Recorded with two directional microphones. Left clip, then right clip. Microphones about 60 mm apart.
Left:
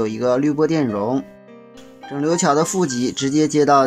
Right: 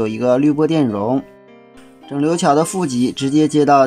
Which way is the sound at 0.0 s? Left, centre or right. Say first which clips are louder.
Right 2 dB; right.